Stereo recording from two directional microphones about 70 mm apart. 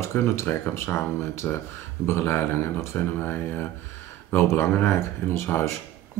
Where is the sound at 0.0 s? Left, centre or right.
Left.